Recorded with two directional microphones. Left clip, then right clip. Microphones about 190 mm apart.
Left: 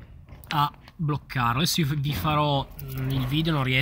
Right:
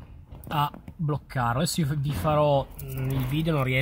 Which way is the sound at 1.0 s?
10° right (ahead or behind).